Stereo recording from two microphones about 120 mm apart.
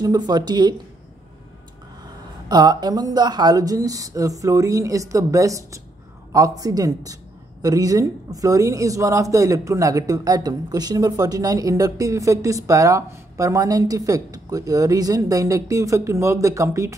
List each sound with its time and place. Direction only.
0.0 s speech: 35° right (ahead or behind)
2.4 s a woman's voice: 35° right (ahead or behind)